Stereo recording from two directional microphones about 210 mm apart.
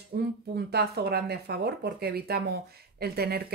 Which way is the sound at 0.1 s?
50° right (ahead or behind).